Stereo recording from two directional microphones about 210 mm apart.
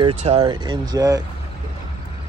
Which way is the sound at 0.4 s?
20° right (ahead or behind).